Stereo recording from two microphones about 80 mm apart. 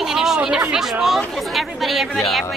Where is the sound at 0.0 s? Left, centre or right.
Centre.